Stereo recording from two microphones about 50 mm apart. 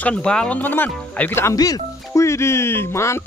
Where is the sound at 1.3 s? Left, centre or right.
Left.